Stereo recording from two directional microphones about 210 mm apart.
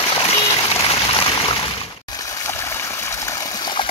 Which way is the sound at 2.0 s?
15° left (ahead or behind).